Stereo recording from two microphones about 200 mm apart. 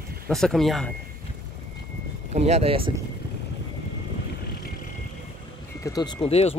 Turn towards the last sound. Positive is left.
turn(degrees=30)  # may be behind; listen again after turning